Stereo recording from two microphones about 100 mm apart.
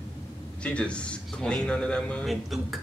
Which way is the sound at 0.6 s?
10° left (ahead or behind).